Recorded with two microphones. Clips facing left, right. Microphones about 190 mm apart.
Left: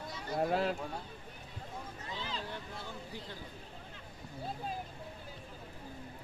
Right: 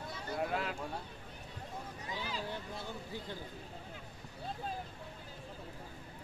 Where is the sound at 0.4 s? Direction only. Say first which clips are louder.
Left 5 dB; 35° left (ahead or behind).